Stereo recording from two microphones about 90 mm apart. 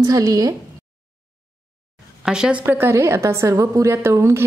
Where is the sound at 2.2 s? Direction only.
10° right (ahead or behind).